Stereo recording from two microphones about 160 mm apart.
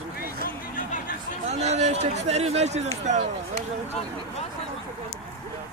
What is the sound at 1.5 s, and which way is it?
Speech, 45° right (ahead or behind).